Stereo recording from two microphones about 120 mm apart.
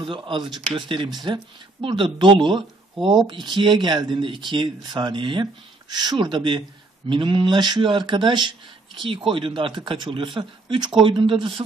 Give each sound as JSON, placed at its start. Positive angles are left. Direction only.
{"t": 0.0, "sound": "speech", "side_deg": -45}